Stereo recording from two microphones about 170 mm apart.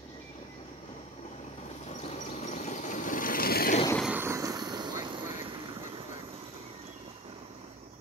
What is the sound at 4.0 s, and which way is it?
Vehicle, 10° right (ahead or behind).